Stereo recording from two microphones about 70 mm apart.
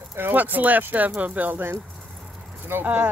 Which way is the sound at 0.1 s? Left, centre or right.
Right.